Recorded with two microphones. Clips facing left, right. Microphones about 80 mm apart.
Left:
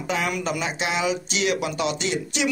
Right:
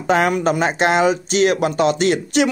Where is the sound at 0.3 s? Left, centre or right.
Right.